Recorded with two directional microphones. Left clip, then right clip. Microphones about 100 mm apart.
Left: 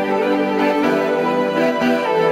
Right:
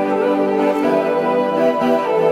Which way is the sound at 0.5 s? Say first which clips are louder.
Right 1 dB; 35° left (ahead or behind).